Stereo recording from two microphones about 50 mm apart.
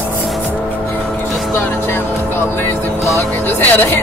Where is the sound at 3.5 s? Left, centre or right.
Left.